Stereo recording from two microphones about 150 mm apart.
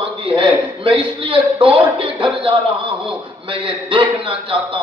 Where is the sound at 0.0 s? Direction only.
35° right (ahead or behind).